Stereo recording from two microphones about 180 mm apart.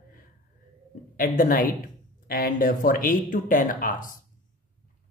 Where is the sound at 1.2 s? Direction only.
50° left (ahead or behind).